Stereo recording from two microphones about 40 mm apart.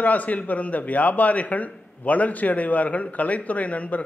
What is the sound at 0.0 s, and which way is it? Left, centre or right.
A man's voice, left.